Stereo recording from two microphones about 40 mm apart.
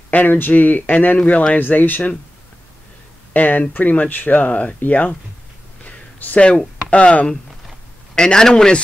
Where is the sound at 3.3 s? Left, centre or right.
Left.